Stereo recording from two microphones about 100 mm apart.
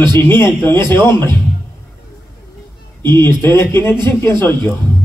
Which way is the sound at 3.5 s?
25° left (ahead or behind).